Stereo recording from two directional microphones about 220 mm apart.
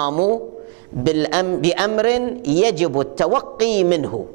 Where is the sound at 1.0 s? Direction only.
10° right (ahead or behind).